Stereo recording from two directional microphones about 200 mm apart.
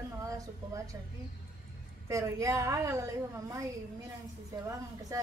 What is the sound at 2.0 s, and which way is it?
Speech, 15° right (ahead or behind).